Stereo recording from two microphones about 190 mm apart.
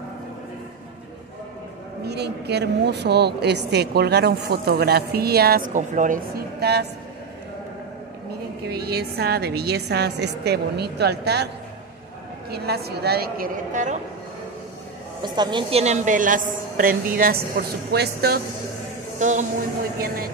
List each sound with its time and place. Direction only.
2.0 s speech: 60° right (ahead or behind)
8.6 s speech: 55° right (ahead or behind)
12.4 s speech: 55° right (ahead or behind)
15.2 s a woman's voice: 25° right (ahead or behind)
15.8 s a woman's voice: 40° right (ahead or behind); by 18.4 s 55° right (ahead or behind)
19.1 s a man's voice: 40° right (ahead or behind)